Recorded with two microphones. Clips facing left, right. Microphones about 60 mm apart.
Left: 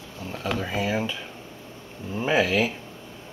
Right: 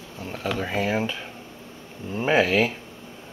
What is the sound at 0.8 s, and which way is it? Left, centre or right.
Speech, right.